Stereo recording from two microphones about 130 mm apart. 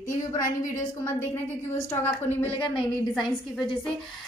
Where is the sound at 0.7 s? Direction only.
20° left (ahead or behind).